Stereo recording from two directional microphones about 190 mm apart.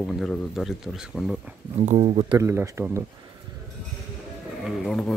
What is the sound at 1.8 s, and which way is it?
Speech, 35° right (ahead or behind).